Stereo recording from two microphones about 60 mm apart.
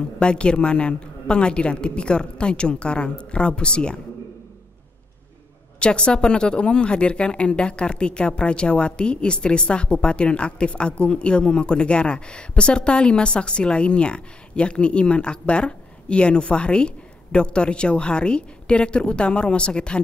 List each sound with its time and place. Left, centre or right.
0.2 s speech: centre
5.8 s speech: centre